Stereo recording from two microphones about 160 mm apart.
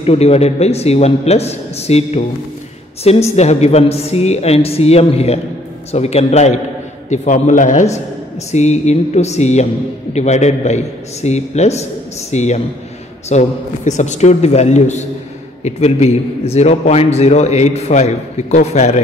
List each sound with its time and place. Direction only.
0.0 s a woman's voice: 40° left (ahead or behind)